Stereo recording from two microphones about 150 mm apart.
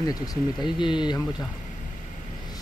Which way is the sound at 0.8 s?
30° left (ahead or behind).